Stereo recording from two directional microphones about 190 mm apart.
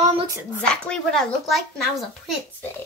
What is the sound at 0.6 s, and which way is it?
Speech, 5° left (ahead or behind).